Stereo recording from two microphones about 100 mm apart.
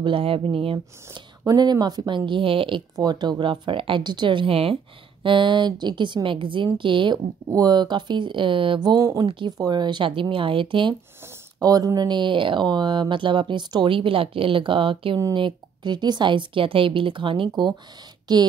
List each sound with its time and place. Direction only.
0.0 s a woman's voice: 65° right (ahead or behind)
1.4 s speech: 40° right (ahead or behind); by 2.8 s 60° right (ahead or behind)
3.0 s a woman's voice: 45° right (ahead or behind); by 4.7 s 70° right (ahead or behind)
5.2 s a woman's voice: 55° right (ahead or behind)
7.4 s speech: 40° right (ahead or behind)
9.2 s a woman's voice: 55° right (ahead or behind)
11.6 s a woman's voice: 40° right (ahead or behind); by 17.7 s 55° right (ahead or behind)